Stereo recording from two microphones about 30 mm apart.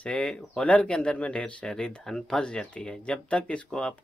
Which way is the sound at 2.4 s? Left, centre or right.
Left.